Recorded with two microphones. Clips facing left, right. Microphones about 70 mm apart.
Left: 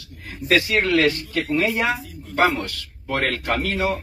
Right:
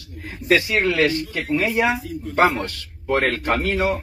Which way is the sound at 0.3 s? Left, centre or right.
Centre.